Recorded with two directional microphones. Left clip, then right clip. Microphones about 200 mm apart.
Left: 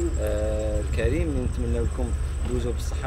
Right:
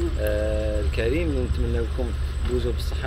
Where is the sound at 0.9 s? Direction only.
30° left (ahead or behind).